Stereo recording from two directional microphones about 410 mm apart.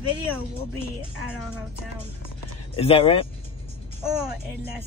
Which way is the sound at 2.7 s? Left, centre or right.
Centre.